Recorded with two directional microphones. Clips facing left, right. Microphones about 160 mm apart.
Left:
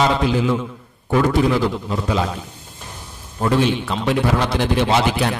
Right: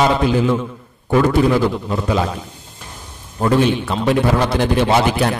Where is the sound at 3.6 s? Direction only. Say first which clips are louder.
Right 3 dB; 50° right (ahead or behind).